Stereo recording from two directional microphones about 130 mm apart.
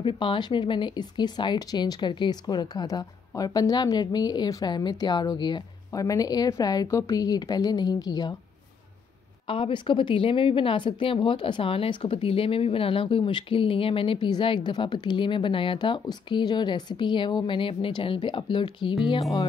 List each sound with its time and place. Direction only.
0.0 s a woman's voice: 40° left (ahead or behind)
9.5 s speech: 40° left (ahead or behind)